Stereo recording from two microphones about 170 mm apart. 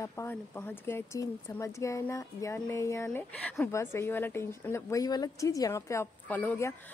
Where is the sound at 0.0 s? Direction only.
15° left (ahead or behind).